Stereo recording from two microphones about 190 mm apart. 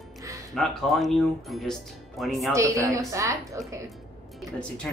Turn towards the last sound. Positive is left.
turn(degrees=5)  # may be behind; listen again after turning